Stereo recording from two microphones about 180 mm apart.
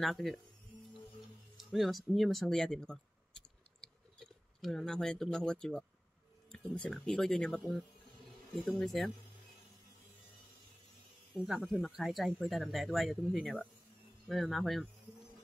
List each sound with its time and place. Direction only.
0.0 s speech: centre (ahead or behind)
1.6 s speech: centre (ahead or behind)
3.8 s a sound: 5° left (ahead or behind)
6.5 s speech: 5° left (ahead or behind)
8.6 s speech: centre (ahead or behind)
11.3 s speech: 5° right (ahead or behind)